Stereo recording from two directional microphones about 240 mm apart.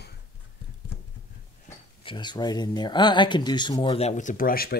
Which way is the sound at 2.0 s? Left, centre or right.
Centre.